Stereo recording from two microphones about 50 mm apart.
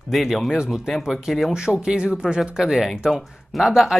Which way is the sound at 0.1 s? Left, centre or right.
Centre.